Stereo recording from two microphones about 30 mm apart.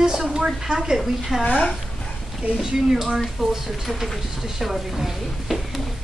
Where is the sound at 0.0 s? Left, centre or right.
Centre.